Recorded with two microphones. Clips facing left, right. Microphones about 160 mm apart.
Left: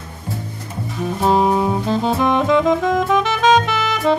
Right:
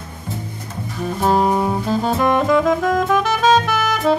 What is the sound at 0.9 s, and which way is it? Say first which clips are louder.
Music: left 1 dB; centre (ahead or behind).